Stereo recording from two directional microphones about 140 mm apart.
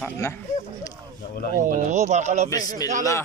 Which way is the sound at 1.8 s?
55° right (ahead or behind).